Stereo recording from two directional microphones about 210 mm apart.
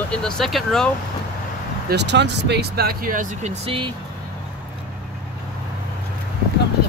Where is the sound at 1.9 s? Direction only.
55° right (ahead or behind); by 3.9 s 25° right (ahead or behind).